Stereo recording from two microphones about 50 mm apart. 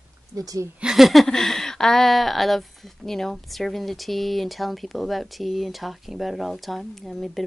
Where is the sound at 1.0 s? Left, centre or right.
Centre.